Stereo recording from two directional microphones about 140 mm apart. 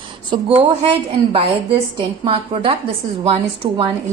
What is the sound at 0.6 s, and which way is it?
A woman's voice, 45° right (ahead or behind).